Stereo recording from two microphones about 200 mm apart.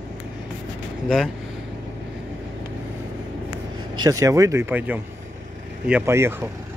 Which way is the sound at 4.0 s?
15° right (ahead or behind).